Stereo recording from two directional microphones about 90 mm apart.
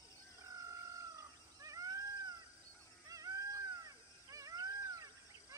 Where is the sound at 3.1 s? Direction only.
40° right (ahead or behind).